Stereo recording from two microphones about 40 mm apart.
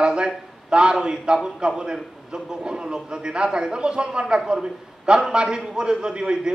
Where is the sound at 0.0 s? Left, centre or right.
Right.